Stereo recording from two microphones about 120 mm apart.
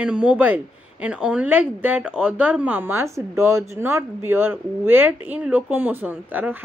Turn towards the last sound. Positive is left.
turn(degrees=-15)  # may be behind; listen again after turning